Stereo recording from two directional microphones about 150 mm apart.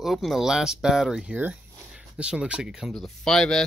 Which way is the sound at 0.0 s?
Centre (ahead or behind).